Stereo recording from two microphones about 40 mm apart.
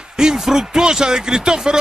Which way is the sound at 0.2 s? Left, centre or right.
Centre.